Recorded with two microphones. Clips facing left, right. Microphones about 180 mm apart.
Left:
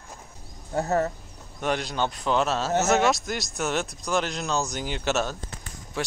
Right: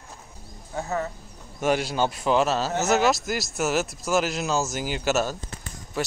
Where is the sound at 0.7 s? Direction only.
45° left (ahead or behind).